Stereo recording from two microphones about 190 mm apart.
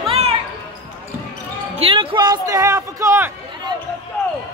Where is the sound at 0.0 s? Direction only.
30° right (ahead or behind).